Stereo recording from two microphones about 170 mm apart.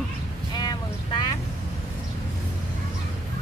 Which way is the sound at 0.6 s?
25° left (ahead or behind).